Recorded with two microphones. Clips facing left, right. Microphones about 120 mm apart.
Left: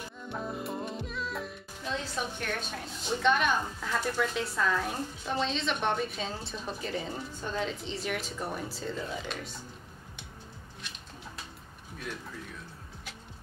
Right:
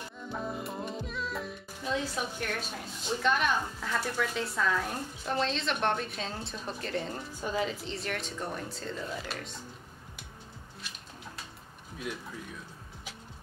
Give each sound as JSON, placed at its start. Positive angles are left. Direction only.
{"t": 0.3, "sound": "speech", "side_deg": 0}
{"t": 12.1, "sound": "speech", "side_deg": -15}